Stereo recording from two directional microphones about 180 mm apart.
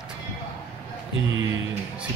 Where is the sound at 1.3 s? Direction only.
90° right.